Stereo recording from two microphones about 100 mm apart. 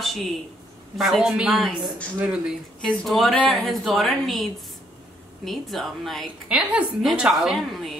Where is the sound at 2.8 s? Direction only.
5° left (ahead or behind).